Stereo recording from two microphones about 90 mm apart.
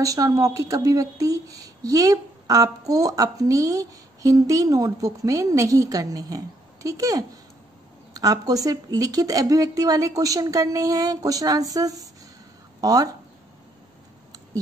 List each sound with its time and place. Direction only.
0.0 s speech: 40° right (ahead or behind)